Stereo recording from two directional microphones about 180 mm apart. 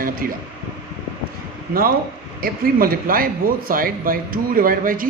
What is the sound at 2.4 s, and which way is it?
Speech, 55° right (ahead or behind).